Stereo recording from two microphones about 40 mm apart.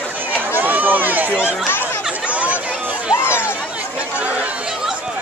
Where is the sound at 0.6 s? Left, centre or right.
Right.